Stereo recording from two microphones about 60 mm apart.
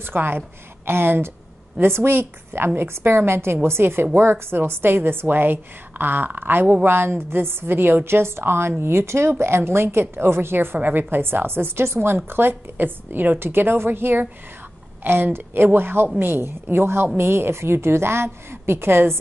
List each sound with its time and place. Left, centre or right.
0.0 s a woman's voice: right